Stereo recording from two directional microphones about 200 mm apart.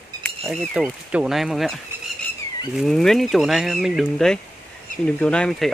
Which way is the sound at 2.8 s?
Centre (ahead or behind).